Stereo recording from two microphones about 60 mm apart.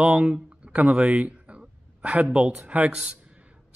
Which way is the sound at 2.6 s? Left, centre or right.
Right.